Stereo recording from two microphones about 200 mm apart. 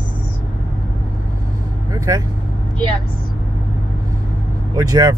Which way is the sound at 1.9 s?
20° right (ahead or behind).